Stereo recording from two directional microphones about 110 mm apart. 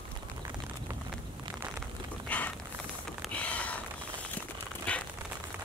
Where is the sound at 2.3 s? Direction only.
15° left (ahead or behind).